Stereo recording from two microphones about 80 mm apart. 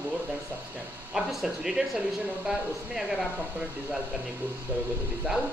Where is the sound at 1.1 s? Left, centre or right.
Centre.